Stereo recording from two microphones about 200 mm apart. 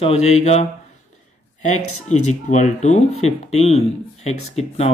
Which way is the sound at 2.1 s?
35° left (ahead or behind).